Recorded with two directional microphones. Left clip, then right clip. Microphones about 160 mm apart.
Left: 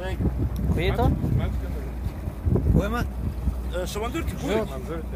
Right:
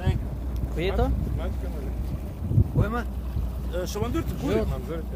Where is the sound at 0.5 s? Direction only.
10° right (ahead or behind).